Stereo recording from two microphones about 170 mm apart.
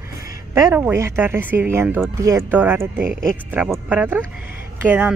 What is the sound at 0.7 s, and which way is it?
Speech, 15° right (ahead or behind).